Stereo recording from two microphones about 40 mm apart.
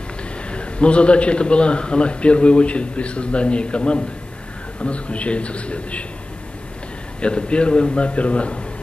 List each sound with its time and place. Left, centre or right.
0.5 s a man's voice: left
7.2 s a man's voice: left